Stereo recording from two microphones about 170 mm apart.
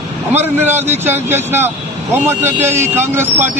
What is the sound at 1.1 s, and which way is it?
A man's voice, 15° right (ahead or behind).